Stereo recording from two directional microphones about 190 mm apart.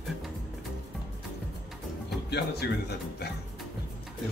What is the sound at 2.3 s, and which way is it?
Speech, 60° left (ahead or behind).